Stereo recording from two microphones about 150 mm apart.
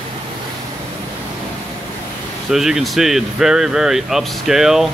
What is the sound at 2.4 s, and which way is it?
Speech, centre (ahead or behind).